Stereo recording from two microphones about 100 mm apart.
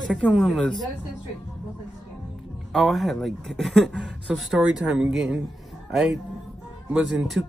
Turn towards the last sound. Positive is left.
turn(degrees=-5)  # may be behind; listen again after turning